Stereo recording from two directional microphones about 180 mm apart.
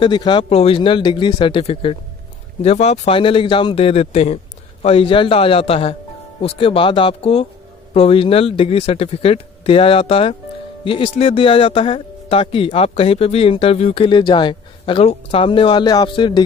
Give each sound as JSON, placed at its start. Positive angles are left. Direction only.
{"t": 0.0, "sound": "speech", "side_deg": 25}